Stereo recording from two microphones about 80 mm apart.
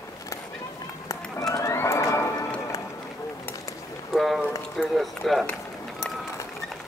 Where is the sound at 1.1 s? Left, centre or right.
Left.